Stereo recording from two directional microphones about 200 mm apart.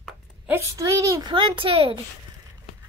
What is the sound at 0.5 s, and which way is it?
A child's voice, 15° right (ahead or behind).